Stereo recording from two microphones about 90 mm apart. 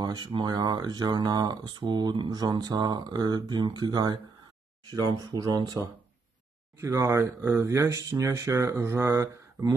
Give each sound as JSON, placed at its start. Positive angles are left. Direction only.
{"t": 0.0, "sound": "a sound", "side_deg": -50}
{"t": 0.3, "sound": "speech", "side_deg": -55}
{"t": 5.2, "sound": "speech", "side_deg": -45}
{"t": 6.8, "sound": "speech", "side_deg": -35}